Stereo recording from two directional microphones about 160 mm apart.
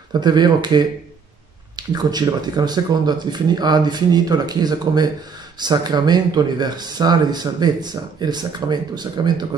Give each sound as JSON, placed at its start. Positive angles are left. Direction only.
{"t": 0.1, "sound": "speech", "side_deg": -25}